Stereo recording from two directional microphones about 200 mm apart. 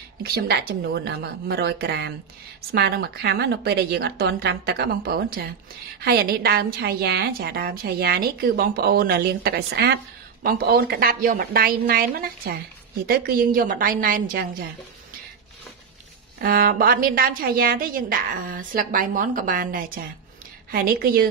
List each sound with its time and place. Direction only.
0.2 s a woman's voice: 50° right (ahead or behind)
16.3 s a woman's voice: 45° right (ahead or behind)